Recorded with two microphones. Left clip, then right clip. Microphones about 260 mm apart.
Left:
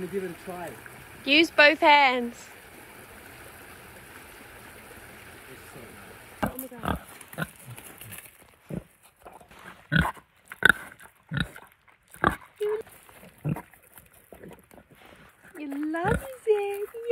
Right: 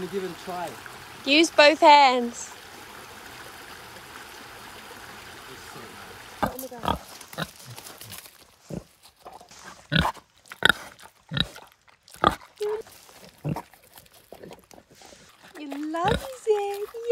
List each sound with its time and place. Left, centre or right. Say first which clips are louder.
0.0 s speech: right 2 dB; centre
3.0 s stream: right 5 dB; centre
6.7 s pig: right 4 dB; right
15.4 s a sound: left 1 dB; right